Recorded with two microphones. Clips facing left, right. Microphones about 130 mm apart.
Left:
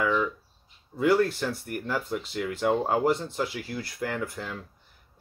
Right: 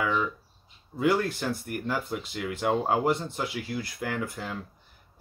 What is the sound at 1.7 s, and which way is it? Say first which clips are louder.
Speech: even; 5° right (ahead or behind).